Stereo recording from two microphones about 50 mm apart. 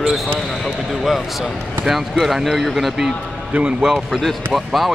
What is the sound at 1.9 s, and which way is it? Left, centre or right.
Speech, centre.